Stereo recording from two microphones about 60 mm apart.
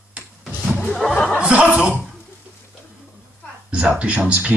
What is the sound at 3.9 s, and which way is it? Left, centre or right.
Speech, right.